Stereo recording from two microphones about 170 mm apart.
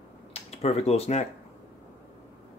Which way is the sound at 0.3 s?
35° left (ahead or behind).